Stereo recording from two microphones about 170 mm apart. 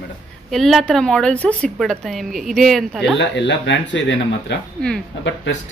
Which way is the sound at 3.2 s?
90° left.